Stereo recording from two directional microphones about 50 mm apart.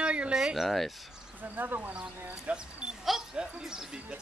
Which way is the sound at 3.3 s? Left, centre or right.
Centre.